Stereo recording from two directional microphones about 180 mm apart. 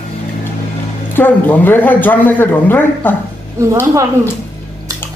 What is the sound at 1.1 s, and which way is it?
Speech, 10° left (ahead or behind).